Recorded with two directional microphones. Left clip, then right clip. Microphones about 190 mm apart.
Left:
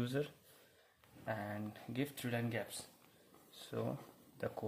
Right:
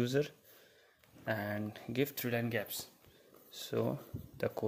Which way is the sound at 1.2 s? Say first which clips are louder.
Right 6 dB; 35° right (ahead or behind).